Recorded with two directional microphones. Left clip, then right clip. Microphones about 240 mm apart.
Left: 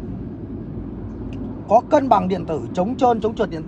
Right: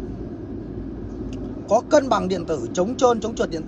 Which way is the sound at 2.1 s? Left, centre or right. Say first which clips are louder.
Left 4 dB; centre.